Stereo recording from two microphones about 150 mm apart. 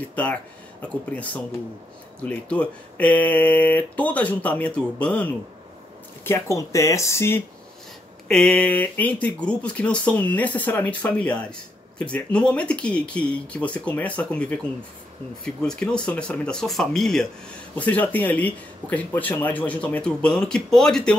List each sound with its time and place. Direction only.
0.1 s speech: 10° left (ahead or behind)
8.3 s speech: 5° left (ahead or behind)